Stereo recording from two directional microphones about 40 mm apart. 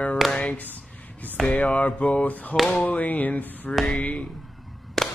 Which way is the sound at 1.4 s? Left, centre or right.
Centre.